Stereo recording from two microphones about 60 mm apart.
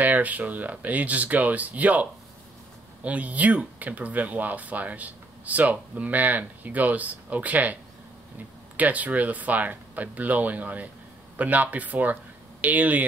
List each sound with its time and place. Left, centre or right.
0.0 s speech: right
8.7 s speech: right